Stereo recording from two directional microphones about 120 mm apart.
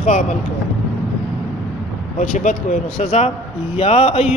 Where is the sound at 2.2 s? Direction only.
90° left; by 4.3 s 60° left (ahead or behind).